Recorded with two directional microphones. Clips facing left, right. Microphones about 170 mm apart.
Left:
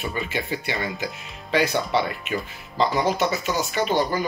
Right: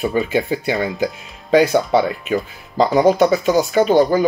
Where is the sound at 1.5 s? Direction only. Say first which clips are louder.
Right 8 dB; 45° right (ahead or behind).